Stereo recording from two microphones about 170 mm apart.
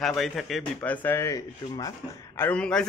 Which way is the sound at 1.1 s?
15° left (ahead or behind).